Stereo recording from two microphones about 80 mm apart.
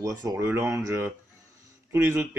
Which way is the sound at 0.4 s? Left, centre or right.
Right.